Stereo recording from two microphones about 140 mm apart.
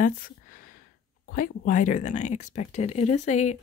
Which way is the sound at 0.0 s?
80° left.